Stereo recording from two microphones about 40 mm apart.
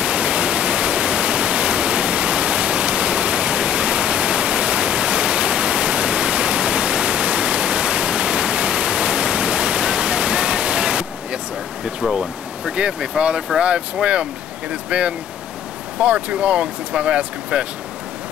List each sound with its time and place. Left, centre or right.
0.0 s pink noise: right
11.8 s a sound: centre
12.7 s speech: right